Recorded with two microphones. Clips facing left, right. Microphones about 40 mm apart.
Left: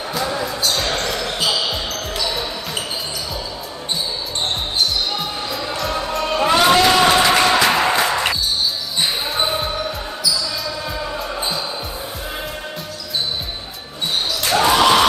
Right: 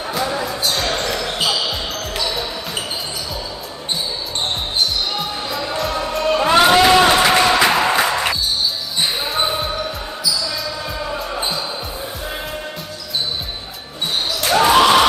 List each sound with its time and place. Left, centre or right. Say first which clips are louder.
0.1 s basketball bounce: right 1 dB; centre
5.1 s basketball bounce: right 1 dB; centre
5.9 s music: right 2 dB; centre
6.5 s a sound: right 2 dB; centre
9.0 s basketball bounce: right 1 dB; centre
14.4 s basketball bounce: right 2 dB; centre